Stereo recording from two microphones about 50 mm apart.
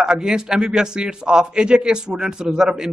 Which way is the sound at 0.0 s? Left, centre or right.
Centre.